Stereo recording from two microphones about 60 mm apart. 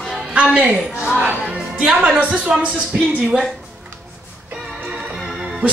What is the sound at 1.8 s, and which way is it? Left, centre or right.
A woman's voice, centre.